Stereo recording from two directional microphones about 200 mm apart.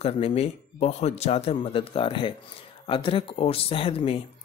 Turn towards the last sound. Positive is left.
turn(degrees=30)  # may be behind; listen again after turning